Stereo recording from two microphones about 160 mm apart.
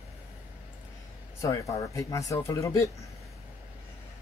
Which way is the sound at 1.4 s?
20° left (ahead or behind).